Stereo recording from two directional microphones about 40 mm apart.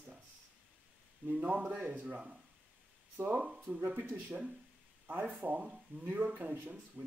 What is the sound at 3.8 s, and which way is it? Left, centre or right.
Speech, right.